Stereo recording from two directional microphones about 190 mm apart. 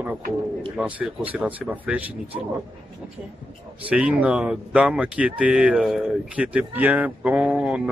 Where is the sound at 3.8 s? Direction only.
5° right (ahead or behind).